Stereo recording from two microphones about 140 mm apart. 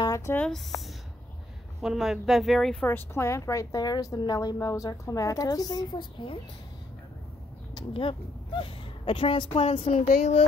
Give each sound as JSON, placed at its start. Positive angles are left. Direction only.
{"t": 0.0, "sound": "speech", "side_deg": 20}
{"t": 0.5, "sound": "speech", "side_deg": 0}
{"t": 2.9, "sound": "a woman's voice", "side_deg": 20}
{"t": 7.7, "sound": "speech", "side_deg": 40}